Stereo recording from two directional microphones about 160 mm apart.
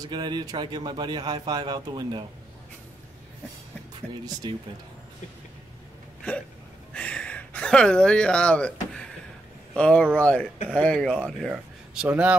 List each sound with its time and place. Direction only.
0.0 s speech: 25° right (ahead or behind)
4.4 s speech: 30° right (ahead or behind)
6.9 s a sound: 5° left (ahead or behind)
9.8 s speech: 5° left (ahead or behind)